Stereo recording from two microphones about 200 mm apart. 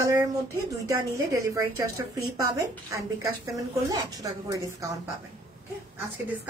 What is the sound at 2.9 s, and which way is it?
A woman's voice, 15° right (ahead or behind).